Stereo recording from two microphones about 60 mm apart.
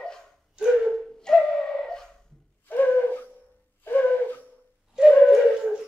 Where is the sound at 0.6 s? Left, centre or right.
Centre.